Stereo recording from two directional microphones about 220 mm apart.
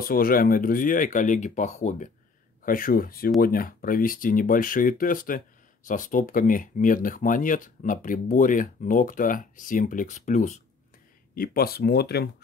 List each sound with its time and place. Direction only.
0.0 s speech: 40° left (ahead or behind)
11.3 s speech: 45° left (ahead or behind)